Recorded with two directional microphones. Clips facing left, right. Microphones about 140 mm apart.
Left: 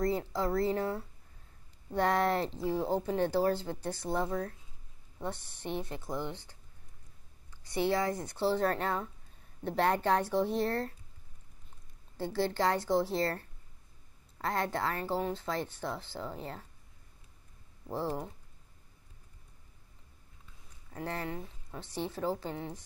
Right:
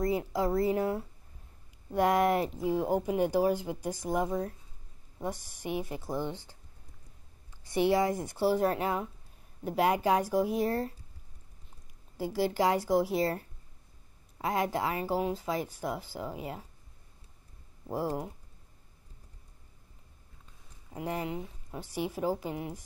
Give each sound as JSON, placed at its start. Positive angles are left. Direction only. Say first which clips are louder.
{"t": 0.0, "sound": "speech", "louder": "right 2 dB", "side_deg": -15}
{"t": 5.6, "sound": "speech", "louder": "right 3 dB", "side_deg": -10}
{"t": 7.7, "sound": "speech", "louder": "right 4 dB", "side_deg": -15}
{"t": 12.2, "sound": "speech", "louder": "right 2 dB", "side_deg": -10}
{"t": 17.8, "sound": "speech", "louder": "right 2 dB", "side_deg": -10}
{"t": 20.9, "sound": "speech", "louder": "right 3 dB", "side_deg": -15}